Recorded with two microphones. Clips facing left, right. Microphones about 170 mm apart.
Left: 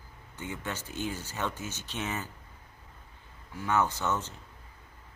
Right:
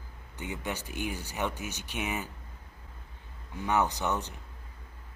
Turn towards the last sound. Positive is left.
turn(degrees=-15)  # may be behind; listen again after turning